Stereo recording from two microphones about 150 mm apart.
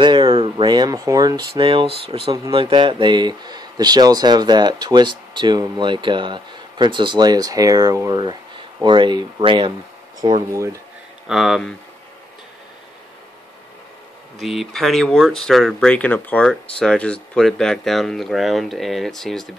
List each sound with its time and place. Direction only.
0.0 s speech: 30° right (ahead or behind)
2.3 s speech: 30° right (ahead or behind)
11.2 s speech: centre (ahead or behind)
14.4 s speech: centre (ahead or behind)